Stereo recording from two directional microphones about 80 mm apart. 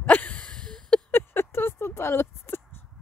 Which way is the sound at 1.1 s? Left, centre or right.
Left.